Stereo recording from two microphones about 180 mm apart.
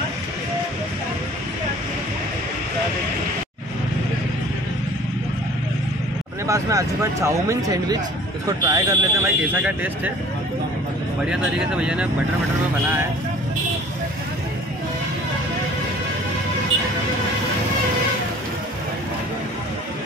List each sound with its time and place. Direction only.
6.4 s speech: 20° right (ahead or behind)
11.2 s speech: 5° right (ahead or behind)